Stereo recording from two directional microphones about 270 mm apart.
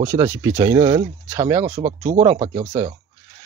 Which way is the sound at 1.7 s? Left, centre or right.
Right.